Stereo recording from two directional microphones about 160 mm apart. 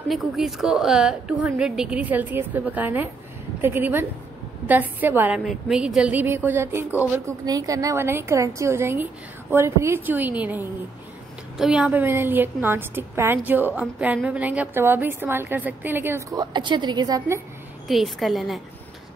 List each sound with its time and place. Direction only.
0.1 s a woman's voice: centre (ahead or behind)
7.4 s a woman's voice: 25° right (ahead or behind)
17.8 s a woman's voice: centre (ahead or behind)